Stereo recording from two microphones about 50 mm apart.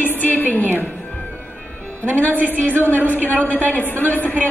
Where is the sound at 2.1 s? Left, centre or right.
Left.